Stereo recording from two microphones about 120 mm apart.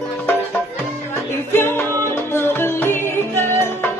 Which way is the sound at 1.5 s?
20° left (ahead or behind).